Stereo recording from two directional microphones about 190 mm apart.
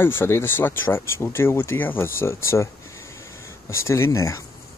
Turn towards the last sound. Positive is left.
turn(degrees=15)  # may be behind; listen again after turning